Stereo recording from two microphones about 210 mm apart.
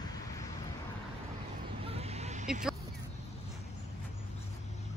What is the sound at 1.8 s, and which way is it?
Vehicle, 30° right (ahead or behind).